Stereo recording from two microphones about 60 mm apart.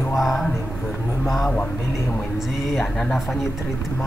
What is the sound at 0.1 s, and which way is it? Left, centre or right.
Speech, centre.